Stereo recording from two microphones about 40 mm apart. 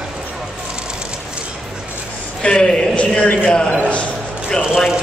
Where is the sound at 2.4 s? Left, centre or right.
Left.